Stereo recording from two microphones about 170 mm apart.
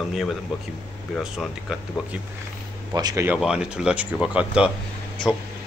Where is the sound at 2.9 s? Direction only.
25° right (ahead or behind).